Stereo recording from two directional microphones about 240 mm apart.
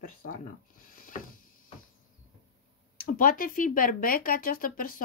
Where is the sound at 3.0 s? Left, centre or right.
Left.